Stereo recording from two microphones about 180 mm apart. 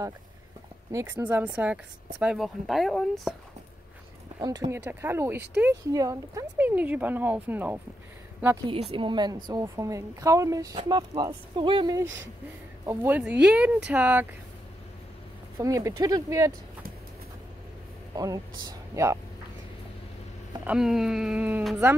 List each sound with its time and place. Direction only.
0.9 s speech: 10° right (ahead or behind)
4.4 s speech: 20° right (ahead or behind)
8.9 s speech: 25° right (ahead or behind); by 14.2 s 10° right (ahead or behind)
15.5 s speech: 20° right (ahead or behind)
18.1 s speech: 20° right (ahead or behind)
20.6 s speech: 5° right (ahead or behind)